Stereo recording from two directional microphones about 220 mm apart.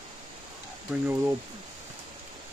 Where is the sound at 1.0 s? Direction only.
10° right (ahead or behind).